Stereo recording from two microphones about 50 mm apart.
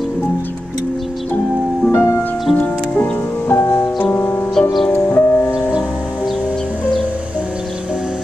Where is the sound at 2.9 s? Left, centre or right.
Left.